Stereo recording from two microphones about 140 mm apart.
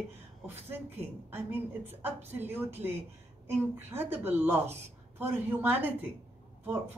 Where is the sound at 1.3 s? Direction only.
15° right (ahead or behind).